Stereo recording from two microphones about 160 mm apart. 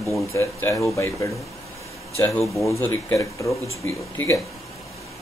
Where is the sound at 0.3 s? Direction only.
15° left (ahead or behind).